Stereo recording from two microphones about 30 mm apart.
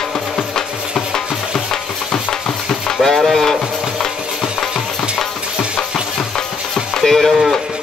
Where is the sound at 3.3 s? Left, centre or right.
Centre.